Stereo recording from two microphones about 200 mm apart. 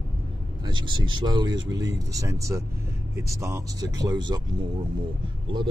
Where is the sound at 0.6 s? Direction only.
20° right (ahead or behind).